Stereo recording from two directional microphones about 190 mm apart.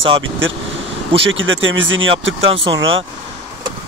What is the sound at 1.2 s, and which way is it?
Speech, 80° right.